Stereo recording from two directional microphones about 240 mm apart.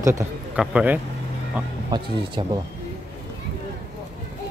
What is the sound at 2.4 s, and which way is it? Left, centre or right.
Speech, centre.